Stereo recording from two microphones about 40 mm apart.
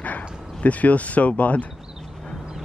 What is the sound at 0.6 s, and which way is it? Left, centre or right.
Speech, left.